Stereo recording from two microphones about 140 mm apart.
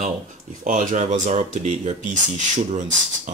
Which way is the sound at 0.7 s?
65° right (ahead or behind).